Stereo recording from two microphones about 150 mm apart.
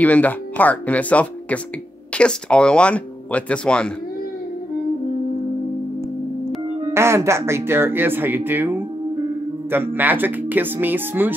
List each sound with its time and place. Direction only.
0.0 s speech: 10° left (ahead or behind)
6.9 s speech: 15° right (ahead or behind)